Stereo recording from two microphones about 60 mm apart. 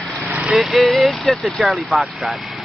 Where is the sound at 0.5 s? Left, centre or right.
Centre.